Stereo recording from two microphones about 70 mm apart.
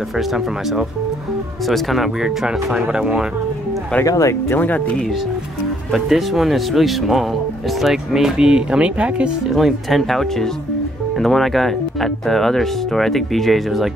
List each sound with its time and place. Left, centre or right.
0.2 s speech: centre
4.0 s speech: left
4.5 s speech: left
5.9 s speech: centre
9.5 s speech: centre